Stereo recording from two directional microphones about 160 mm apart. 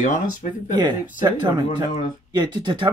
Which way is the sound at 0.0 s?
50° left (ahead or behind).